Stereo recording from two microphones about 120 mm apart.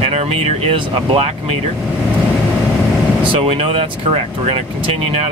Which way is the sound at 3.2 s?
50° right (ahead or behind).